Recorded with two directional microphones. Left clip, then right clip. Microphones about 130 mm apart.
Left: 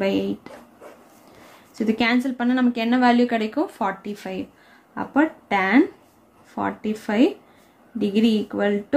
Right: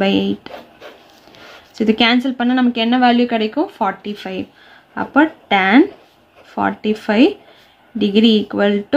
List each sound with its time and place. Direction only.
0.0 s speech: 25° right (ahead or behind)
1.8 s speech: 25° right (ahead or behind)